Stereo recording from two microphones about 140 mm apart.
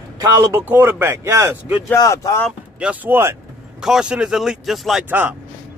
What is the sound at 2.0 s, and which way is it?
Speech, 20° left (ahead or behind).